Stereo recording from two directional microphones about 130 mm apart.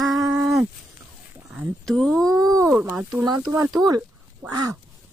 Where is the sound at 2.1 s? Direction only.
30° right (ahead or behind).